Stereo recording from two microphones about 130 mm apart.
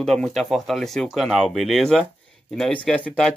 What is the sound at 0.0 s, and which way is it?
Speech, 5° left (ahead or behind).